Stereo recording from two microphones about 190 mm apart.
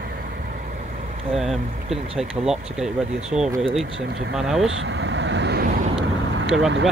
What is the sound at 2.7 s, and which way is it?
Speech, 5° right (ahead or behind).